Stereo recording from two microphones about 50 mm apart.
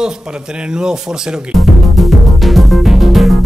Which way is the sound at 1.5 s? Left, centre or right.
Centre.